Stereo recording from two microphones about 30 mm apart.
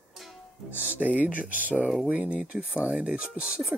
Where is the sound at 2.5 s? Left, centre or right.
Right.